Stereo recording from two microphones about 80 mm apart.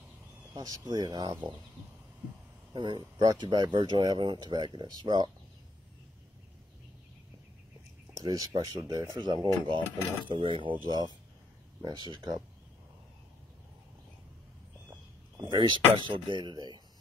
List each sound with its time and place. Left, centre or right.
0.6 s speech: right
2.7 s speech: right
8.2 s speech: right
15.4 s speech: right
16.3 s speech: right